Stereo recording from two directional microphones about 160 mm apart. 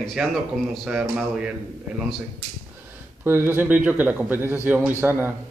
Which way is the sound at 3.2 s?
15° right (ahead or behind).